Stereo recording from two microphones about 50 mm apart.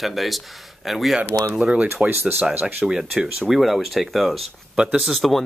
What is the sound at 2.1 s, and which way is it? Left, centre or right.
Speech, right.